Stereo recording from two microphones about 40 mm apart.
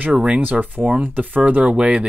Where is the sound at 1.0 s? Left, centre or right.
Right.